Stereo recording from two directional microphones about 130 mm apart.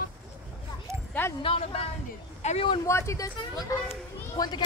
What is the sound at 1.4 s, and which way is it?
Speech, 50° left (ahead or behind).